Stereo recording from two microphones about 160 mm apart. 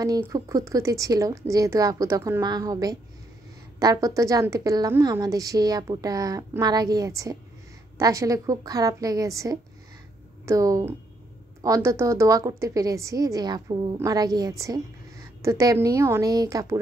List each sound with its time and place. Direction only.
0.0 s a woman's voice: 20° right (ahead or behind)